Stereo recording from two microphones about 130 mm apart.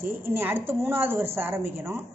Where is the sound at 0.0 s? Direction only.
15° right (ahead or behind).